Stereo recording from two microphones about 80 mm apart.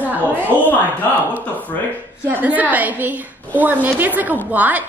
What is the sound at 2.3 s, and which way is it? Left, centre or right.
A woman's voice, right.